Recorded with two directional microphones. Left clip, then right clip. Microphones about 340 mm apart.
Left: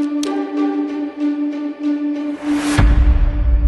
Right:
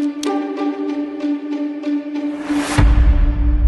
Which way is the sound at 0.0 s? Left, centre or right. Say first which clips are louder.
Even; centre.